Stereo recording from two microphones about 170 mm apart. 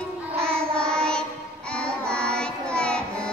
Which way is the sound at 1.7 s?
5° left (ahead or behind).